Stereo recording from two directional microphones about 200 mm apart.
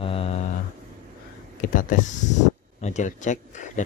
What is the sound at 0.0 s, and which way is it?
Mantra, 30° left (ahead or behind).